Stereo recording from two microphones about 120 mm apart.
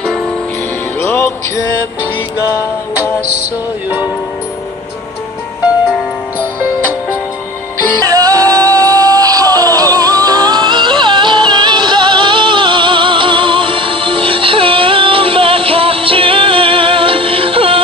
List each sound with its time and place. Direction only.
8.0 s music: 30° right (ahead or behind); by 17.8 s 50° right (ahead or behind)